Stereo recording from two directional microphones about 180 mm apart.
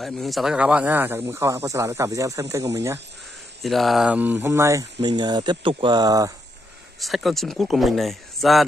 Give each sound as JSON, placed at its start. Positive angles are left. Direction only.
{"t": 0.0, "sound": "speech", "side_deg": 0}
{"t": 3.6, "sound": "speech", "side_deg": 0}
{"t": 7.0, "sound": "speech", "side_deg": 0}